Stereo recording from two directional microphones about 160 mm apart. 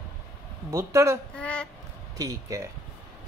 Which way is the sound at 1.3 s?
5° left (ahead or behind).